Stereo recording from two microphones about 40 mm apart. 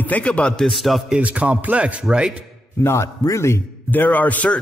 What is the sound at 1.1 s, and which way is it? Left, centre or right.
Speech, right.